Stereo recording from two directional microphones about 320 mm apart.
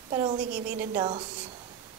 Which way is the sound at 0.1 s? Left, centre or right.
Centre.